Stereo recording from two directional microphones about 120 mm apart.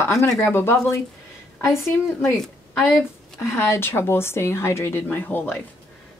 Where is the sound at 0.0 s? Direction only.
25° left (ahead or behind).